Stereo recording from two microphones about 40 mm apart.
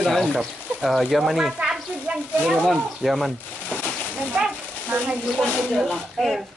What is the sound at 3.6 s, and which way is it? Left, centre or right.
Splash, left.